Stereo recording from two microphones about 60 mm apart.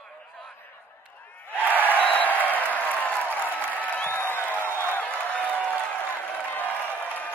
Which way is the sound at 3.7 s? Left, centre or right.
Left.